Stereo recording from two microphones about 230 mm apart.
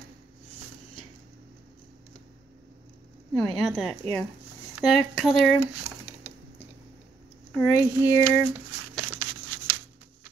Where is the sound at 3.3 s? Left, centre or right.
Centre.